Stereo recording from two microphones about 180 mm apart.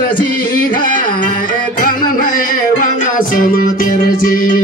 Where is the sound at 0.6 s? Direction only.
50° left (ahead or behind).